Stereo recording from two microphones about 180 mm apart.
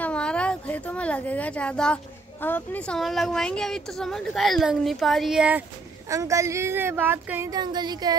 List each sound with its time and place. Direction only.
0.0 s a woman's voice: 5° left (ahead or behind)
6.0 s speech: 15° right (ahead or behind)